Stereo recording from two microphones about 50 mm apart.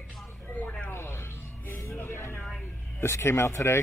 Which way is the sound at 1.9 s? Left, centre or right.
Left.